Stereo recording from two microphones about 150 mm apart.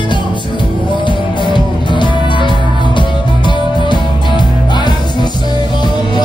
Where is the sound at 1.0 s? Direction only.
30° left (ahead or behind).